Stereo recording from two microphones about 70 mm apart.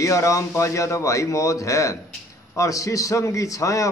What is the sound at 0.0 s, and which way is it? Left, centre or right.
A man's voice, left.